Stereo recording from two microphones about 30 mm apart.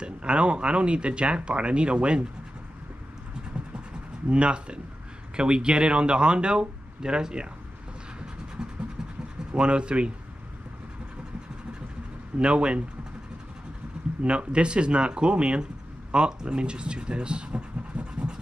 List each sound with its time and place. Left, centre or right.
0.0 s speech: right
4.3 s speech: right
9.5 s speech: right
12.4 s speech: right
14.2 s speech: right